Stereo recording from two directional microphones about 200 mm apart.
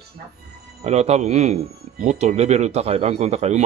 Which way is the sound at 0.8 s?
35° right (ahead or behind).